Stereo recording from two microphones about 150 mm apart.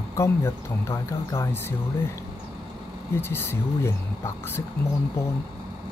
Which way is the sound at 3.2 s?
15° left (ahead or behind).